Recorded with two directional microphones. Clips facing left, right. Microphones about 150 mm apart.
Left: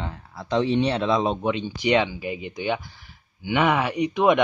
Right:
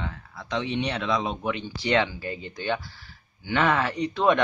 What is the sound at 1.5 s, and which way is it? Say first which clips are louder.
Speech: left 1 dB; 15° left (ahead or behind).